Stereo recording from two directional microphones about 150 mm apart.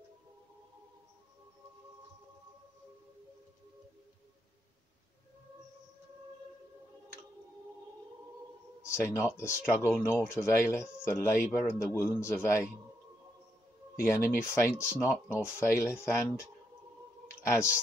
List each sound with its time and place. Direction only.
8.9 s speech: 15° left (ahead or behind)
13.9 s speech: 20° left (ahead or behind)